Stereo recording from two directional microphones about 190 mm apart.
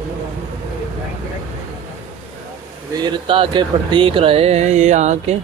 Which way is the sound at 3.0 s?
25° right (ahead or behind).